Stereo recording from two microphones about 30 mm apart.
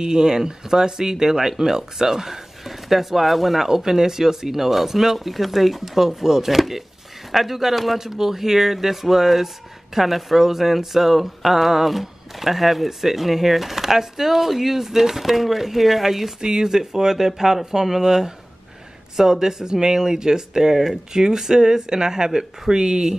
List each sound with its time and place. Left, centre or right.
0.0 s speech: right; by 8.0 s centre
8.0 s speech: centre
16.3 s speech: right